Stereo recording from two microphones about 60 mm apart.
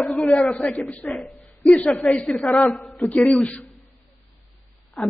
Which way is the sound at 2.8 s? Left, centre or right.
Left.